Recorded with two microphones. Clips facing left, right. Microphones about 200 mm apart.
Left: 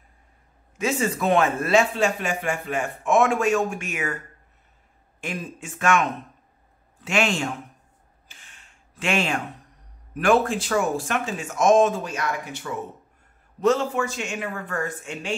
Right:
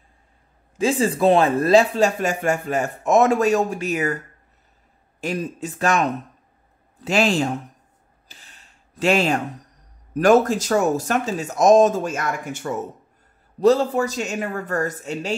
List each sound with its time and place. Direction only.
0.7 s speech: 30° right (ahead or behind)
5.2 s speech: 40° right (ahead or behind)
8.3 s a sound: 35° right (ahead or behind)
10.1 s speech: 40° right (ahead or behind)
13.6 s speech: 35° right (ahead or behind)